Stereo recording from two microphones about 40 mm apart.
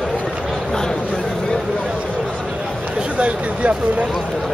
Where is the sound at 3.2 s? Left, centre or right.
Right.